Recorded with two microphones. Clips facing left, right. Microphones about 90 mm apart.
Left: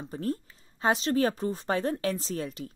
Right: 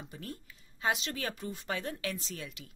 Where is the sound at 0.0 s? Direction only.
35° left (ahead or behind).